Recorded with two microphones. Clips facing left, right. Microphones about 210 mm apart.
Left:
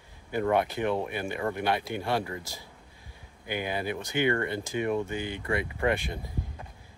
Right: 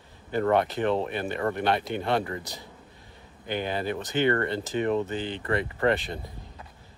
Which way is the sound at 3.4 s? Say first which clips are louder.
Right 2 dB; 10° left (ahead or behind).